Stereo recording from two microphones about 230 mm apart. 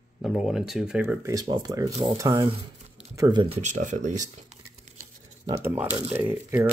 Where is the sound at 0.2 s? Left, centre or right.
Centre; by 4.3 s right.